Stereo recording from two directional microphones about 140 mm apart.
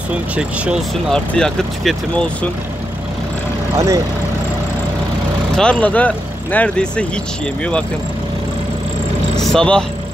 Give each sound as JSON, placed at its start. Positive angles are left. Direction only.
{"t": 0.1, "sound": "speech", "side_deg": -5}
{"t": 1.1, "sound": "speech", "side_deg": 5}
{"t": 3.7, "sound": "speech", "side_deg": -20}
{"t": 5.6, "sound": "speech", "side_deg": 10}
{"t": 9.4, "sound": "speech", "side_deg": 5}